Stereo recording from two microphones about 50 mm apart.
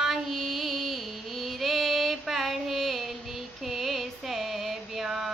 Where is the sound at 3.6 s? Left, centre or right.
Centre.